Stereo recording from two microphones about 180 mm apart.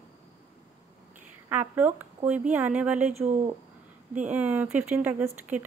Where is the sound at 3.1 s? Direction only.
40° right (ahead or behind).